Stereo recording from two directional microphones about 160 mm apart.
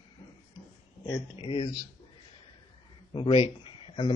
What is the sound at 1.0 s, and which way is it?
Speech, 30° left (ahead or behind).